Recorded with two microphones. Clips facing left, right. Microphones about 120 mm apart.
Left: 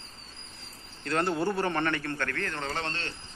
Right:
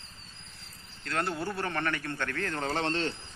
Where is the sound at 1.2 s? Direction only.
25° left (ahead or behind).